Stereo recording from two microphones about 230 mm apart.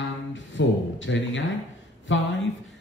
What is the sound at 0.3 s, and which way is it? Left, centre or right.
Speech, left.